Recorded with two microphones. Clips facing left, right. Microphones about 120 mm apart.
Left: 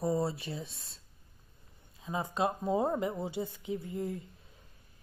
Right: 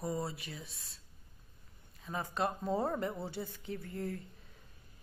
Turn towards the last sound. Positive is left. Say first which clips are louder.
# left 4 dB
turn(degrees=15)  # may be behind; listen again after turning